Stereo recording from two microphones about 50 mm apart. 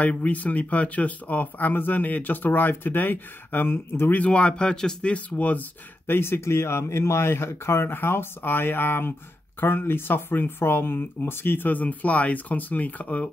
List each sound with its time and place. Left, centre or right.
0.0 s speech: left
4.1 s speech: left
5.4 s speech: left
6.0 s speech: left
7.9 s speech: left